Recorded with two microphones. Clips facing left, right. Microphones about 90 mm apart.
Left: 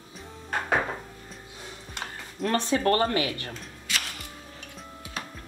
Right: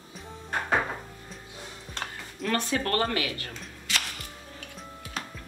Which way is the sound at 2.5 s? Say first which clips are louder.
Left 4 dB; 25° left (ahead or behind).